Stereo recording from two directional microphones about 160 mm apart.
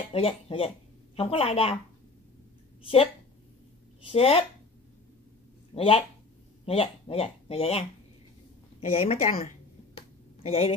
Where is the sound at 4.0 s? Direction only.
35° left (ahead or behind).